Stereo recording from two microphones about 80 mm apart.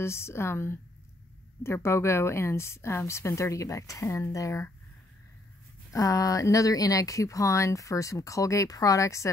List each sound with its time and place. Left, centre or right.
0.0 s a woman's voice: left
5.9 s speech: left